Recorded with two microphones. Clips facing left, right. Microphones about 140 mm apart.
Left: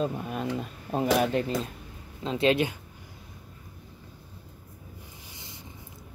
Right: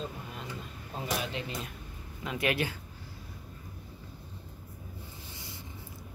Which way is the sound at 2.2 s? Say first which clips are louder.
Left 7 dB; 25° left (ahead or behind).